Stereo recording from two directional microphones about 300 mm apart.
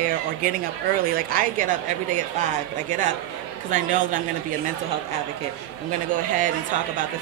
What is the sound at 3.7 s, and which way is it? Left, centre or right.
Speech, right.